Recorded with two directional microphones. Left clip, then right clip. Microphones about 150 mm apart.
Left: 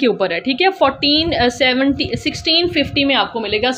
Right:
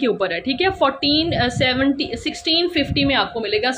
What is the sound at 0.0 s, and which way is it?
A woman's voice, 25° left (ahead or behind).